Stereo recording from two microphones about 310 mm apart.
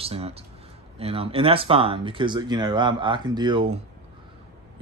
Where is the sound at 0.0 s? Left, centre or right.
Centre.